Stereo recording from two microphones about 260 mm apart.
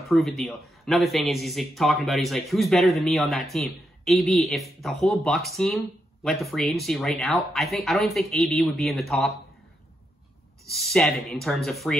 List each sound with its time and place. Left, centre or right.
0.1 s a man's voice: centre
10.7 s a man's voice: centre